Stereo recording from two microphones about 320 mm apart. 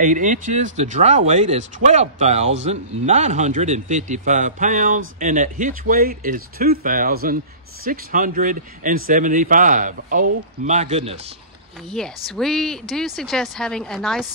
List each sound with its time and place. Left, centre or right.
0.0 s speech: right
12.3 s speech: centre